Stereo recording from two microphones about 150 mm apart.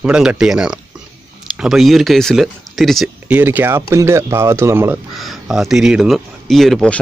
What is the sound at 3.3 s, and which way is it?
Speech, 10° right (ahead or behind).